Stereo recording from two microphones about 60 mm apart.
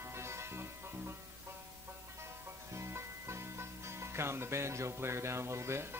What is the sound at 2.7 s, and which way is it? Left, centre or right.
Music, right.